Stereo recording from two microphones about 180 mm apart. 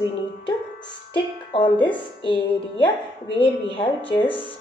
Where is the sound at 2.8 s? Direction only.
30° left (ahead or behind).